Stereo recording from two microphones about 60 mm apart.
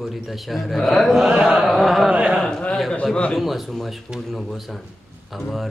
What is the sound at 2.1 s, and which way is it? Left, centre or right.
Speech, centre.